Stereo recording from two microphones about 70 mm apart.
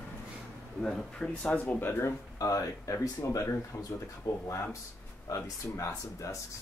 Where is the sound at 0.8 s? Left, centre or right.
Centre.